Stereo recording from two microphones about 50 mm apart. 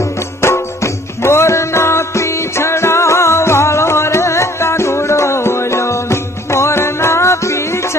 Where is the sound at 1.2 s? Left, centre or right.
Left.